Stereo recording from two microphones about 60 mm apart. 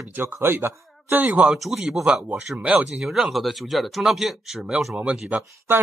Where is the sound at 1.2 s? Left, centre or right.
Right.